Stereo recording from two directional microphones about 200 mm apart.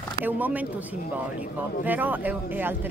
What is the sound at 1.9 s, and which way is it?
Speech, 10° right (ahead or behind).